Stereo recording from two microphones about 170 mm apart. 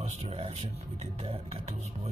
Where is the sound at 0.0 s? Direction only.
40° right (ahead or behind).